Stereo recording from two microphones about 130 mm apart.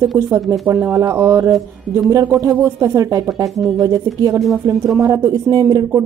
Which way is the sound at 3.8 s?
30° right (ahead or behind).